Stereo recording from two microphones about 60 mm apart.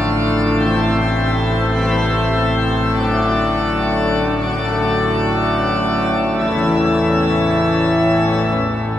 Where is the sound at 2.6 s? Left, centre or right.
Centre.